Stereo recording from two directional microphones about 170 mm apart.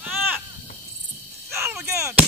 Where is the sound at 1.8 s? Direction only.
15° right (ahead or behind).